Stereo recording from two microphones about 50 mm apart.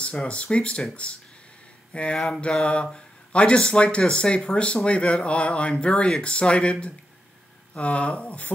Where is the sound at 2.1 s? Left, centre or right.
Centre.